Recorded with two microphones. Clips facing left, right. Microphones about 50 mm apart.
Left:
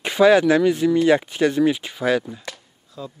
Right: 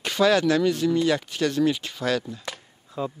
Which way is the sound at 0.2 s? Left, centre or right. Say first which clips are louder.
Left 5 dB; centre.